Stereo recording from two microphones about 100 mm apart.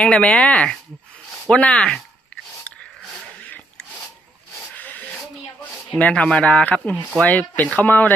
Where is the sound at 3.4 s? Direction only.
15° left (ahead or behind).